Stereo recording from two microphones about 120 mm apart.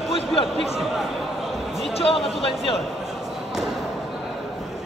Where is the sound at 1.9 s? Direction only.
50° left (ahead or behind).